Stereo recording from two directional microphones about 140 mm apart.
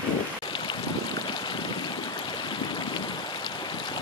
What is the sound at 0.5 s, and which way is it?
Stream, 35° left (ahead or behind).